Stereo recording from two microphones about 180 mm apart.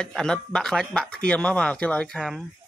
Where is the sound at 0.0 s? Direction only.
5° left (ahead or behind).